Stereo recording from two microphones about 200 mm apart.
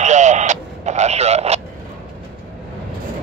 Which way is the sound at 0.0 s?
35° right (ahead or behind).